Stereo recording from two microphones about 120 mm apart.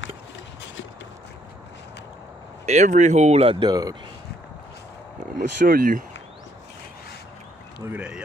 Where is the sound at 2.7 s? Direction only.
75° right (ahead or behind); by 3.6 s 60° right (ahead or behind).